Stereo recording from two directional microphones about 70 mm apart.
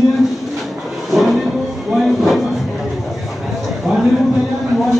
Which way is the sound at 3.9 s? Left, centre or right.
Centre.